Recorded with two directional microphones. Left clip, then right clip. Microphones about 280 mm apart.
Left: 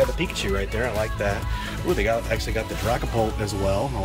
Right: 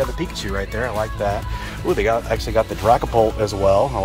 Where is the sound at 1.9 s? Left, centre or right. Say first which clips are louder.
Right 5 dB; centre.